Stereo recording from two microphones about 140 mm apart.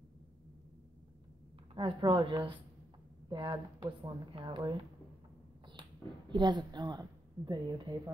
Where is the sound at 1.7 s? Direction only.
35° right (ahead or behind).